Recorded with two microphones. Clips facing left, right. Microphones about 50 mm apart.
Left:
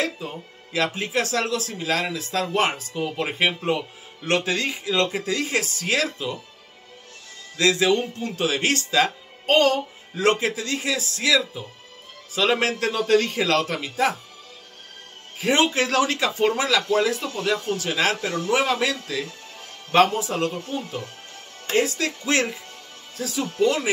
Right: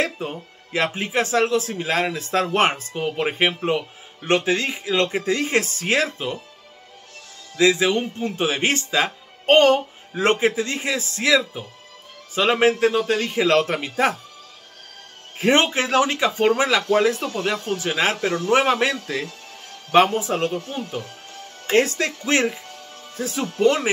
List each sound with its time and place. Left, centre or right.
0.0 s speech: right
0.9 s speech: right
3.0 s speech: right
7.5 s speech: centre
9.5 s a man's voice: right; by 13.5 s centre
13.5 s speech: right
15.3 s speech: right
18.3 s speech: right
19.9 s speech: right
21.7 s speech: right